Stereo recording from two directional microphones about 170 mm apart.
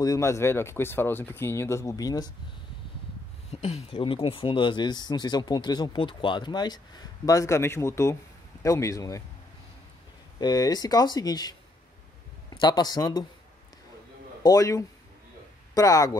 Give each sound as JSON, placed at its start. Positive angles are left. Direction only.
{"t": 0.0, "sound": "speech", "side_deg": 20}
{"t": 3.4, "sound": "speech", "side_deg": 40}
{"t": 10.4, "sound": "speech", "side_deg": 25}
{"t": 14.4, "sound": "speech", "side_deg": 20}